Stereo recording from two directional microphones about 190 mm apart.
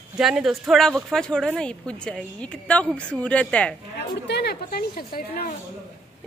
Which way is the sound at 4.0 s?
60° left (ahead or behind).